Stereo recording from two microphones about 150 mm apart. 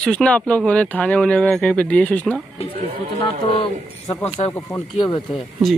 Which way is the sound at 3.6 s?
40° left (ahead or behind).